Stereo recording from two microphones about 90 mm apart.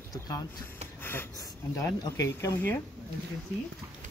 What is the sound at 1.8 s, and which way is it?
Speech, 30° left (ahead or behind).